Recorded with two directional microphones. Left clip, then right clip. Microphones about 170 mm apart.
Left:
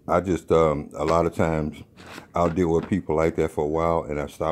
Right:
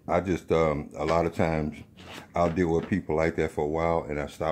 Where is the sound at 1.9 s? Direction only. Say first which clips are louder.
Left 2 dB; 50° left (ahead or behind).